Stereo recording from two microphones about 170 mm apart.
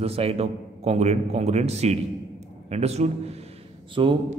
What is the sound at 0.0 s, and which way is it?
A man's voice, 35° right (ahead or behind).